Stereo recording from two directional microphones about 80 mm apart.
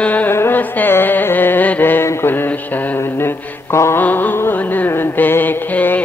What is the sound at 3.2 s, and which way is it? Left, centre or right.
Mantra, left.